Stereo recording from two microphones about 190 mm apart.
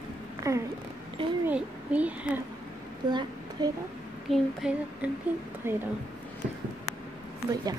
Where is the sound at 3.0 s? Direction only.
20° right (ahead or behind).